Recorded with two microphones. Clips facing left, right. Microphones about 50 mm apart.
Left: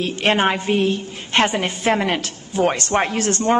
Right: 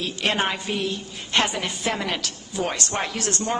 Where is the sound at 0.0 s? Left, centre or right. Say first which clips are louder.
Left 6 dB; left.